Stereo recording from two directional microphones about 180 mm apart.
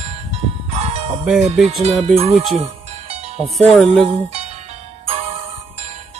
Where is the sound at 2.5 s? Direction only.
35° right (ahead or behind).